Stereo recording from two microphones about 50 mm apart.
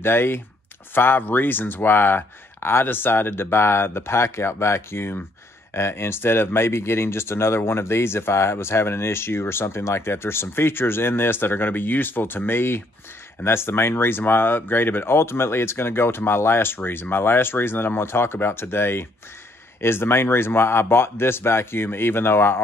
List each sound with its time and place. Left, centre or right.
0.0 s speech: left